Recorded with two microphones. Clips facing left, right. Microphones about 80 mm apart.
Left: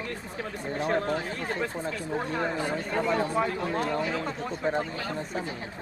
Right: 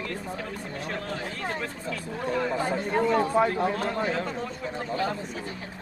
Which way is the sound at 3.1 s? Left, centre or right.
Right.